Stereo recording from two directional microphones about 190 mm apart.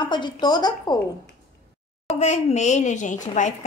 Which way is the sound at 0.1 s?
25° left (ahead or behind).